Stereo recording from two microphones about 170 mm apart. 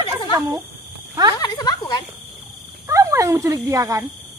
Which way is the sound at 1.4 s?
25° left (ahead or behind).